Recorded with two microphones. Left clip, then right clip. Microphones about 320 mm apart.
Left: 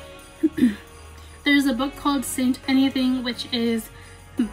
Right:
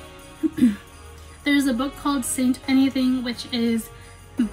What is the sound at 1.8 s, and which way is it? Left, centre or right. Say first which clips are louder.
Speech: left 1 dB; centre.